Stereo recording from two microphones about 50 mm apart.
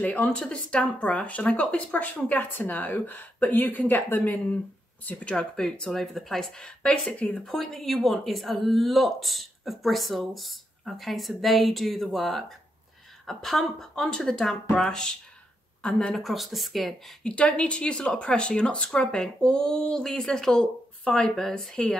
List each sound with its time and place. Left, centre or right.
0.2 s speech: left
5.3 s speech: centre
6.6 s speech: centre
7.4 s speech: centre
16.2 s speech: centre
17.2 s speech: centre
19.1 s speech: centre